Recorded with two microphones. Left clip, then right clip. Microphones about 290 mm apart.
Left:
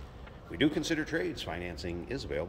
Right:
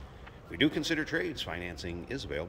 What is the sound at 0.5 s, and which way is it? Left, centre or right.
Speech, centre.